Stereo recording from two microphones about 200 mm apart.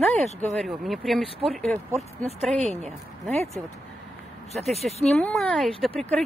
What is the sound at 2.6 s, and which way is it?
Speech, 35° right (ahead or behind).